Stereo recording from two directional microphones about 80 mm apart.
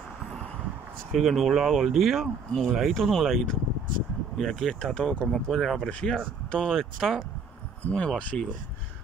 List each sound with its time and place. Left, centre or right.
1.1 s speech: centre
5.8 s speech: centre
7.8 s speech: centre